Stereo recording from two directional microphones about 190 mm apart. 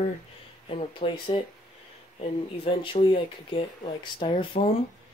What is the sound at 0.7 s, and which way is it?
Speech, 30° left (ahead or behind).